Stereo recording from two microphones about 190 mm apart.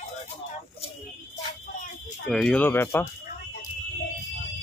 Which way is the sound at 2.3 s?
5° left (ahead or behind).